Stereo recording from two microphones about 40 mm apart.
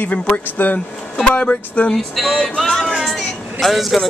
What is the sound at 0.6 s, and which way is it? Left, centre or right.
Speech, left.